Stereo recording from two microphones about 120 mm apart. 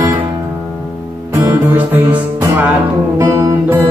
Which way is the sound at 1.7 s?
15° right (ahead or behind).